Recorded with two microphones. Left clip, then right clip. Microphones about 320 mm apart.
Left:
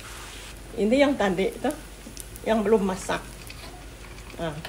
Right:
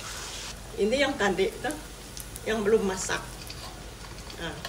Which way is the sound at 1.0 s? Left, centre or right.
Centre.